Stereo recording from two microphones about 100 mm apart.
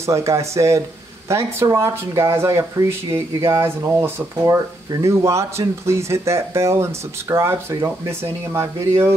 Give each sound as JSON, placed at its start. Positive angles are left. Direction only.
{"t": 0.0, "sound": "speech", "side_deg": -30}